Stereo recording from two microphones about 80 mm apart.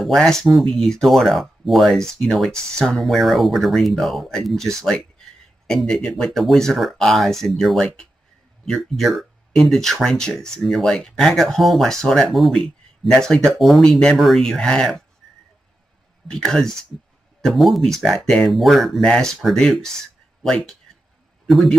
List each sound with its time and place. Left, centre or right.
0.0 s speech: centre
16.3 s a man's voice: centre